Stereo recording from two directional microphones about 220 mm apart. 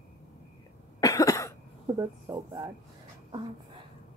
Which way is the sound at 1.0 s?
15° left (ahead or behind).